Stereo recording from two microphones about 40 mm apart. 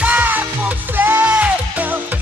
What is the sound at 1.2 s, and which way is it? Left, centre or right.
Music, right.